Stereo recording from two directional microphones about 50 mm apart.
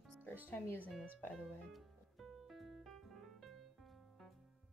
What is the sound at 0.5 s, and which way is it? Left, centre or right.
Speech, left.